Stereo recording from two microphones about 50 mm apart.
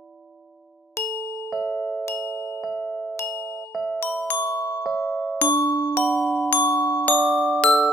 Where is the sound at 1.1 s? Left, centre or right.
Left.